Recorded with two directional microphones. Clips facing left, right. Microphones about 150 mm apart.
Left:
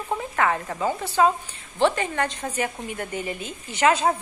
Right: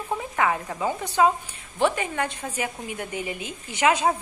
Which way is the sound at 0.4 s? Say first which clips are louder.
Left 1 dB; 5° right (ahead or behind).